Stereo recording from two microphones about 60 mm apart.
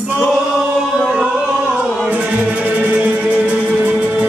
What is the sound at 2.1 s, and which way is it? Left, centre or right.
Music, right.